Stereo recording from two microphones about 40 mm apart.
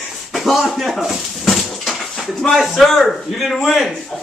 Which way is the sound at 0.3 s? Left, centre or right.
Centre.